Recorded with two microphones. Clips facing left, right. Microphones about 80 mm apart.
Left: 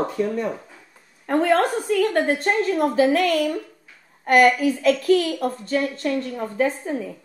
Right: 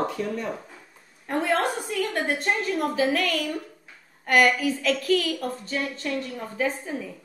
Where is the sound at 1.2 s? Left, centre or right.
Left.